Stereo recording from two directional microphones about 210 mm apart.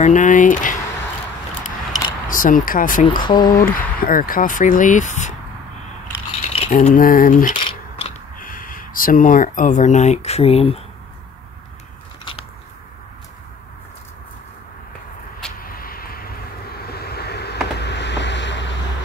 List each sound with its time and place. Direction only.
0.0 s speech: 35° left (ahead or behind)
2.2 s speech: 40° left (ahead or behind)
3.3 s speech: 20° left (ahead or behind)
3.5 s speech: 40° left (ahead or behind)
6.5 s speech: 30° left (ahead or behind)
7.5 s scissors: 25° left (ahead or behind)
8.4 s speech: 40° left (ahead or behind)
15.6 s vehicle: 45° left (ahead or behind)